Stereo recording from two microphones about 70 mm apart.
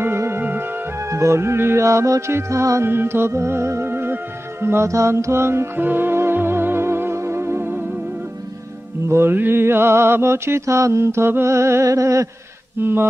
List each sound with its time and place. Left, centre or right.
0.0 s music: right
0.9 s music: right
2.9 s music: right
9.1 s mantra: right
12.8 s mantra: right